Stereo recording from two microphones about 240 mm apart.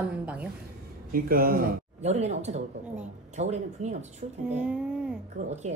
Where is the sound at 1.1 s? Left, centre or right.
Right.